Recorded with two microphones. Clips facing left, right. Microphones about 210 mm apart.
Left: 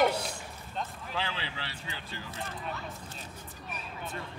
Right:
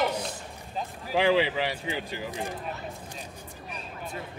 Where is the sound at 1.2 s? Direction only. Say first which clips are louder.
Right 15 dB; 15° right (ahead or behind).